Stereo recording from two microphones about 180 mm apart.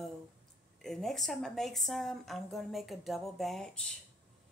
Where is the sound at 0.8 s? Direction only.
Centre (ahead or behind).